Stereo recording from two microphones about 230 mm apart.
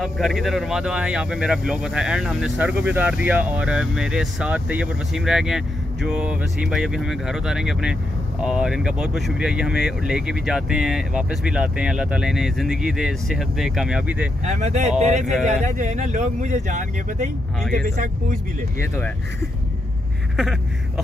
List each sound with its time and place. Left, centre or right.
0.0 s speech: centre
14.4 s speech: right
18.8 s speech: centre